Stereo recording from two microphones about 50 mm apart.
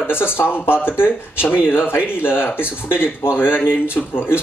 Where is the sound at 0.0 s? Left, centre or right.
Left.